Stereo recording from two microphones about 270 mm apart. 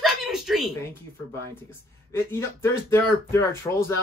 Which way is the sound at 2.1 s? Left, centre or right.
Centre.